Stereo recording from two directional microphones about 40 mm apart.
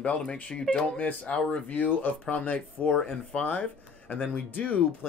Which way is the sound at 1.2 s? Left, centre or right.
Left.